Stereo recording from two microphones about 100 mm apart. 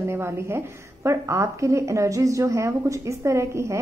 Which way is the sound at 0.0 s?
25° right (ahead or behind).